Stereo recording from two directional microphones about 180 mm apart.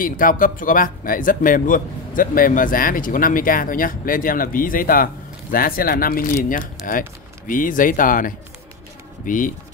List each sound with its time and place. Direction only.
0.0 s speech: 50° left (ahead or behind)